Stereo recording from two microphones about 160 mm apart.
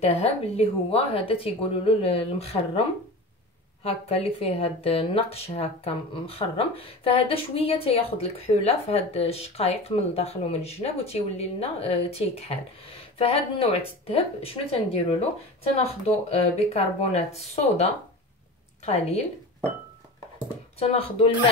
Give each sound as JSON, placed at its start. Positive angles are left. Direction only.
{"t": 0.0, "sound": "speech", "side_deg": 40}
{"t": 3.8, "sound": "speech", "side_deg": 40}
{"t": 16.3, "sound": "speech", "side_deg": 40}
{"t": 18.9, "sound": "a woman's voice", "side_deg": 45}
{"t": 20.8, "sound": "speech", "side_deg": 40}